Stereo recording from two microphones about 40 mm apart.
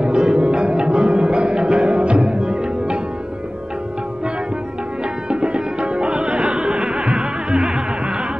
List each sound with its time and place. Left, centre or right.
0.0 s music: right
5.3 s music: right